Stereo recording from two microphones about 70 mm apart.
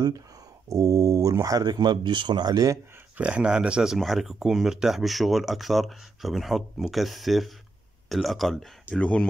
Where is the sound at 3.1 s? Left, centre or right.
Centre.